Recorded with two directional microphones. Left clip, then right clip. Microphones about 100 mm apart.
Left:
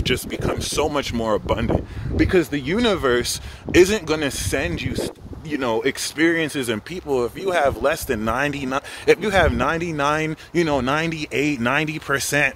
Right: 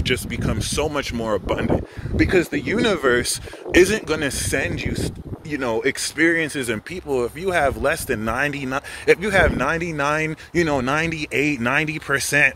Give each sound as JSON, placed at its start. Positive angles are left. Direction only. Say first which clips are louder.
{"t": 0.0, "sound": "speech", "louder": "even", "side_deg": 30}
{"t": 2.1, "sound": "speech", "louder": "even", "side_deg": 5}
{"t": 6.4, "sound": "speech", "louder": "even", "side_deg": 30}
{"t": 7.1, "sound": "speech", "louder": "left 1 dB", "side_deg": 20}
{"t": 10.5, "sound": "speech", "louder": "even", "side_deg": -5}
{"t": 10.8, "sound": "speech", "louder": "even", "side_deg": 10}